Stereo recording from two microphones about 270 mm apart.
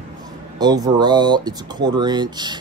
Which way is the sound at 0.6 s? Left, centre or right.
Centre.